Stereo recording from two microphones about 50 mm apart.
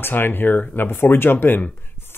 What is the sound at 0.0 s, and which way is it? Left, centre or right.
Speech, left.